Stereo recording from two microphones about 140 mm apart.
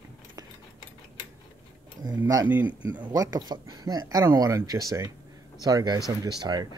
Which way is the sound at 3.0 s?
25° right (ahead or behind).